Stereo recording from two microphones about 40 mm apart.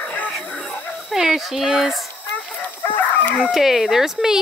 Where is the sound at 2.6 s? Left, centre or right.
Left.